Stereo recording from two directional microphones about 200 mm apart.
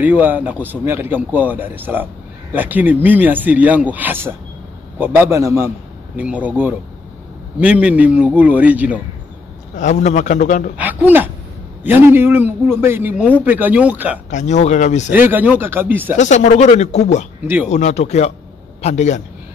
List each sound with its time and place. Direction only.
0.0 s a man's voice: 10° right (ahead or behind)
9.8 s speech: 35° left (ahead or behind)
10.8 s a man's voice: 10° right (ahead or behind)
14.3 s speech: 35° left (ahead or behind)
15.1 s a man's voice: 10° right (ahead or behind)
16.2 s speech: 35° left (ahead or behind)